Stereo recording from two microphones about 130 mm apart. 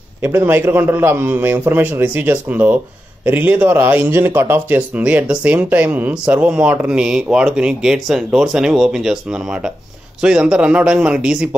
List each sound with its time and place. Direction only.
0.2 s speech: 15° right (ahead or behind)